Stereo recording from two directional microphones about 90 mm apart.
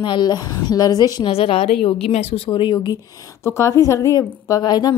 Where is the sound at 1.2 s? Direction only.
90° left; by 3.0 s 55° left (ahead or behind).